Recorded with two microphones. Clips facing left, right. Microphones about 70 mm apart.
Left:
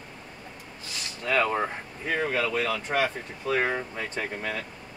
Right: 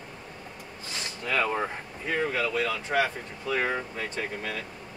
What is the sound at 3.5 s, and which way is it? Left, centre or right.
Speech, left.